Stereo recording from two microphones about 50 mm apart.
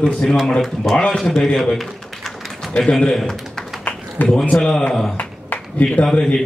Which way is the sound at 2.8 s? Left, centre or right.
Centre.